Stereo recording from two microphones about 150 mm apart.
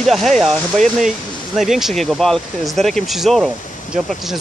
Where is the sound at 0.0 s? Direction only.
Centre (ahead or behind).